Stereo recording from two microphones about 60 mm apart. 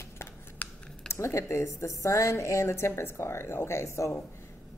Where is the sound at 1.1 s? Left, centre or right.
Left.